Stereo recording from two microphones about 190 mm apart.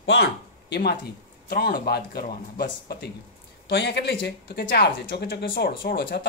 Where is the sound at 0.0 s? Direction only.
65° left (ahead or behind).